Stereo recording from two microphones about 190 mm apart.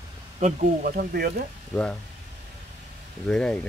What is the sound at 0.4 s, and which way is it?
Speech, 45° right (ahead or behind).